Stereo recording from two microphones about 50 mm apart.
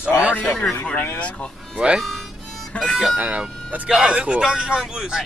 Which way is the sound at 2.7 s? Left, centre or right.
Centre.